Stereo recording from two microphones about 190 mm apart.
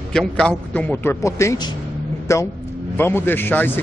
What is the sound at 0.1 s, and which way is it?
A man's voice, 5° left (ahead or behind).